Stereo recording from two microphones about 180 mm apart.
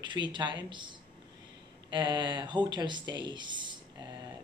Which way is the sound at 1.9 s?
25° right (ahead or behind).